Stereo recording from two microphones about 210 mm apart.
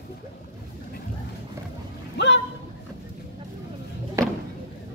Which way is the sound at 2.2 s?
55° left (ahead or behind).